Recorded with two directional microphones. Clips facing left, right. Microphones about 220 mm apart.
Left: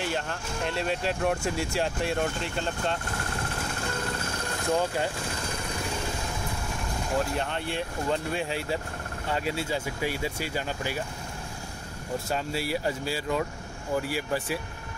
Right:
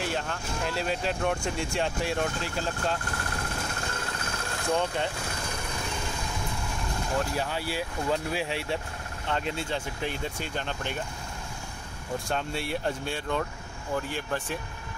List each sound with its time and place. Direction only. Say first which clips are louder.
0.0 s speech: even; centre (ahead or behind)
4.7 s speech: left 1 dB; 5° left (ahead or behind)
7.2 s speech: left 1 dB; 5° right (ahead or behind)
12.3 s speech: left 2 dB; 5° left (ahead or behind)